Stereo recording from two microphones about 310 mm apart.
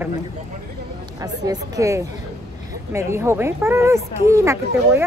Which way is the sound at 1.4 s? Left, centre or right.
Centre.